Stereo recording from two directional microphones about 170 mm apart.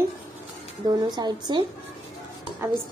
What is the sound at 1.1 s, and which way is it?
Speech, 25° right (ahead or behind).